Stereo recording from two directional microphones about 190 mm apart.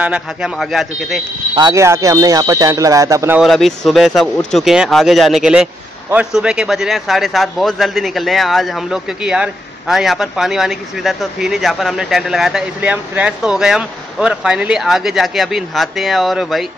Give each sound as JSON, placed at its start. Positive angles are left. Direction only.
{"t": 0.0, "sound": "speech", "side_deg": -5}
{"t": 1.5, "sound": "speech", "side_deg": -20}
{"t": 3.4, "sound": "speech", "side_deg": 0}